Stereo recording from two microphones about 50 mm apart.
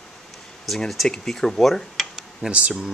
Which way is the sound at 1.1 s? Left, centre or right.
Centre.